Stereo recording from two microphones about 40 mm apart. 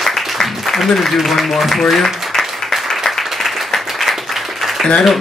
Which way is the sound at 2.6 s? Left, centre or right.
Centre.